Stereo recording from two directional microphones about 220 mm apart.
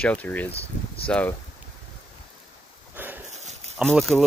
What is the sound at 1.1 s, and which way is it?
Speech, 5° left (ahead or behind).